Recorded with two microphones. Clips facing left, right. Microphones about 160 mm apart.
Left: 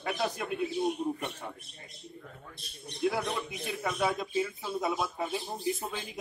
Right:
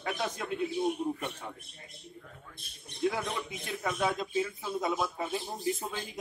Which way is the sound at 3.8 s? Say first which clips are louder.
Even; 5° left (ahead or behind).